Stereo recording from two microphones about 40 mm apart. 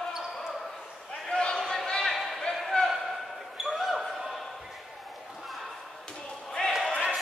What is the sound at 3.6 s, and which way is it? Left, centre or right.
Basketball bounce, centre.